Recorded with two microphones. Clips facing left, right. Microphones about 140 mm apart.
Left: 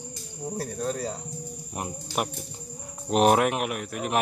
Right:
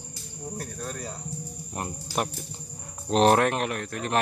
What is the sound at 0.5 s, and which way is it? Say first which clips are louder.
Speech: left 7 dB; 30° left (ahead or behind).